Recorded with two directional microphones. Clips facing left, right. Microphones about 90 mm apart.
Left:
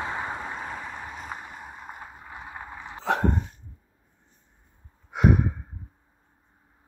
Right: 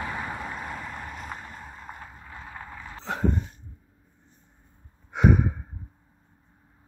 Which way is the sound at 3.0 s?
90° left.